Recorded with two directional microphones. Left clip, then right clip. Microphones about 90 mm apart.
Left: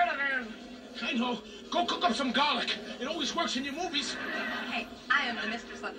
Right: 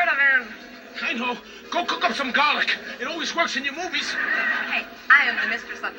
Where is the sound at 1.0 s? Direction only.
35° right (ahead or behind).